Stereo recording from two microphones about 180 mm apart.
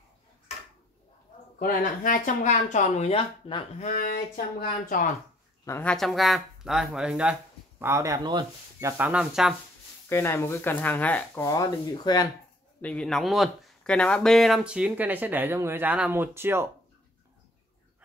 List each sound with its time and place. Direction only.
1.6 s speech: 50° left (ahead or behind); by 3.6 s 30° left (ahead or behind)
3.8 s speech: 50° left (ahead or behind)
5.7 s speech: 10° left (ahead or behind)
7.8 s speech: 15° right (ahead or behind)
8.9 s speech: 10° right (ahead or behind)
10.0 s speech: 15° left (ahead or behind)
12.8 s speech: 5° left (ahead or behind); by 16.6 s 10° right (ahead or behind)